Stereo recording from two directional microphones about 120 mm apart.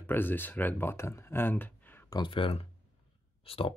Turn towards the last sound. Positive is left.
turn(degrees=50)  # may be behind; listen again after turning